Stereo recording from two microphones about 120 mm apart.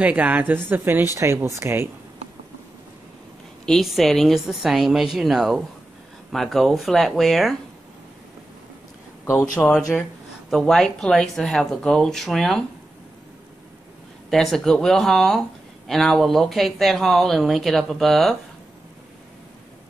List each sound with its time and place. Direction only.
0.0 s speech: 10° right (ahead or behind)
3.6 s speech: centre (ahead or behind)
9.2 s speech: 25° left (ahead or behind)
9.6 s speech: 5° left (ahead or behind)
14.3 s speech: 5° left (ahead or behind)